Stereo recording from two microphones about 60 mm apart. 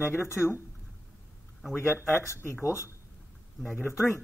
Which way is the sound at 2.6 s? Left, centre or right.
Left.